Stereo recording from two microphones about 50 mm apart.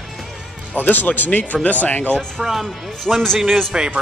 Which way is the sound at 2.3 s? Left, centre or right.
Centre.